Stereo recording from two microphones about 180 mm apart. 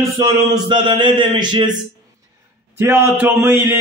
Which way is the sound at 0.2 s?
25° right (ahead or behind).